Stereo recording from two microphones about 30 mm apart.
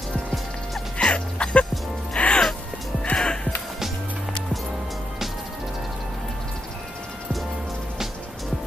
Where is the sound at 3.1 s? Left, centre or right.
Centre.